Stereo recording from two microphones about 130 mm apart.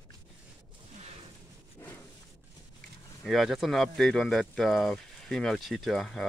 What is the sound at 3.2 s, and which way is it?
Speech, centre (ahead or behind).